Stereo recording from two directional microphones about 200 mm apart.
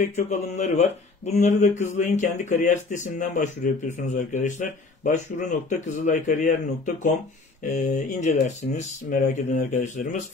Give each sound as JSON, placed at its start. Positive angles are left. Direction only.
{"t": 0.0, "sound": "speech", "side_deg": 35}